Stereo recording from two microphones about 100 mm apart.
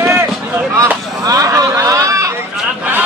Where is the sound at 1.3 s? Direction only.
35° right (ahead or behind).